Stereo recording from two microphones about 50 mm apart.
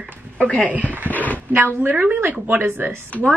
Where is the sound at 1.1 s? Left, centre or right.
Left.